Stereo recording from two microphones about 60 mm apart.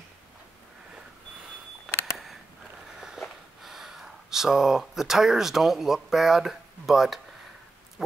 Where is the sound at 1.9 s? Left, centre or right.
Centre.